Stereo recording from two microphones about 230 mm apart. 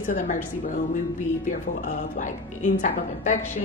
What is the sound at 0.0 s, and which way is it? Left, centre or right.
Speech, left.